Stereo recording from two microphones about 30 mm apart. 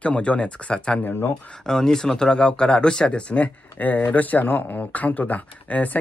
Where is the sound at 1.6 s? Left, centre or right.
Centre; by 3.5 s left.